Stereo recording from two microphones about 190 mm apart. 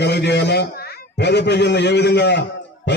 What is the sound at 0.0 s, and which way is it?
A man's voice, 60° left (ahead or behind).